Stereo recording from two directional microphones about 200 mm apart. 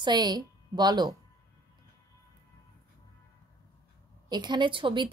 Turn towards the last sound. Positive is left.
turn(degrees=-25)  # may be behind; listen again after turning